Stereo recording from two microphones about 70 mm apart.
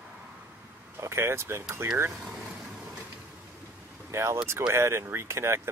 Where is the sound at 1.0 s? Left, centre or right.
Right.